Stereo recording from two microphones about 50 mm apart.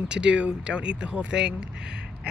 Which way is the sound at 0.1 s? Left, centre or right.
Centre.